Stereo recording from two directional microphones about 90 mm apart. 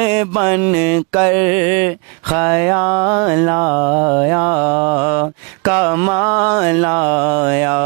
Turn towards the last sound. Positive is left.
turn(degrees=-20)  # may be behind; listen again after turning